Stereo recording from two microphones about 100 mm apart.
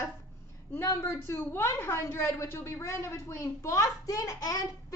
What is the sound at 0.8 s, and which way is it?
A woman's voice, 30° left (ahead or behind).